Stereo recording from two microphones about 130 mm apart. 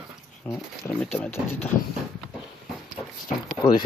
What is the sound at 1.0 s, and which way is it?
Speech, 5° left (ahead or behind).